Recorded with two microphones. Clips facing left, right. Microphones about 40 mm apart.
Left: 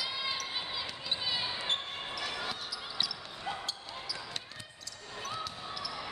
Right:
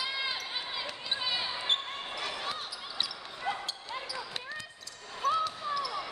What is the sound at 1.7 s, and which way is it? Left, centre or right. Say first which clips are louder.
Basketball bounce: right 3 dB; right.